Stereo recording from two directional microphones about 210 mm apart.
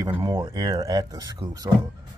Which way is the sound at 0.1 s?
10° right (ahead or behind).